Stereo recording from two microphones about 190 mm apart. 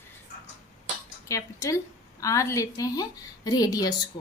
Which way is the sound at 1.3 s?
15° left (ahead or behind).